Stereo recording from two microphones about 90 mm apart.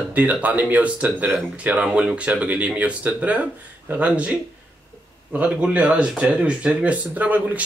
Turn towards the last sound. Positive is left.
turn(degrees=-15)  # may be behind; listen again after turning